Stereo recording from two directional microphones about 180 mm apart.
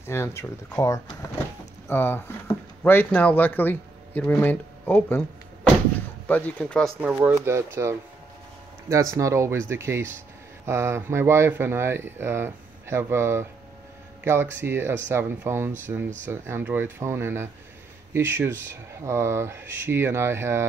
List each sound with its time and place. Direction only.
0.0 s speech: 15° left (ahead or behind)
7.0 s speech: 10° right (ahead or behind)